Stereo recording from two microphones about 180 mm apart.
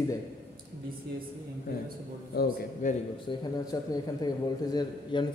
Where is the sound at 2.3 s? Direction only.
60° left (ahead or behind).